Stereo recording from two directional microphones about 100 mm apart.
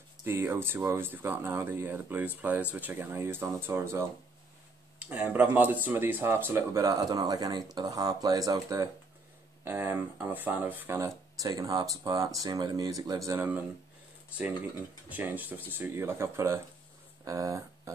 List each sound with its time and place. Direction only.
0.2 s speech: 25° right (ahead or behind)
9.7 s speech: 20° right (ahead or behind)
11.4 s speech: 40° right (ahead or behind)
15.0 s speech: 15° right (ahead or behind)
17.2 s a sound: 35° right (ahead or behind)